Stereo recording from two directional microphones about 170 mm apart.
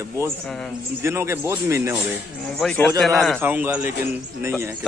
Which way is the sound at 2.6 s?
5° left (ahead or behind).